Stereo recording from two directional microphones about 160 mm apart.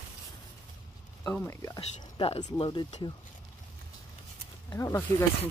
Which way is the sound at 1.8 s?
40° left (ahead or behind).